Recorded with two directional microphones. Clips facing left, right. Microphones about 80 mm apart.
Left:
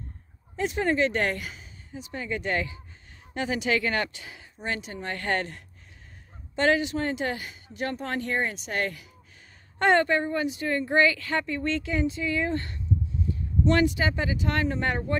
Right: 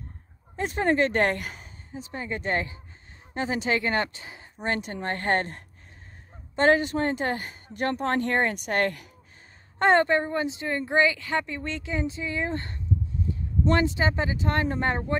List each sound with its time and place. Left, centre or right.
0.6 s speech: right
1.9 s a woman's voice: right
4.6 s speech: right
9.8 s a woman's voice: right